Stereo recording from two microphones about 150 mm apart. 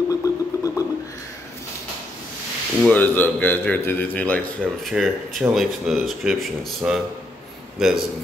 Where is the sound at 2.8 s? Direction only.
10° left (ahead or behind).